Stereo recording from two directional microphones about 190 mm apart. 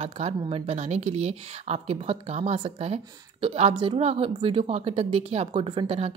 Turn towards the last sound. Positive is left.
turn(degrees=-30)  # may be behind; listen again after turning